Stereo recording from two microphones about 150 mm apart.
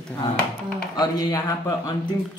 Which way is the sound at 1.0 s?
20° left (ahead or behind).